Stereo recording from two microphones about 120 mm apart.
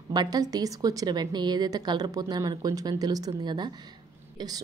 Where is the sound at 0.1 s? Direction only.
35° right (ahead or behind).